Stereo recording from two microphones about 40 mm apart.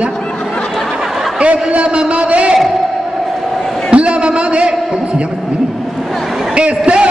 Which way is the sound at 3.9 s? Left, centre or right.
Right.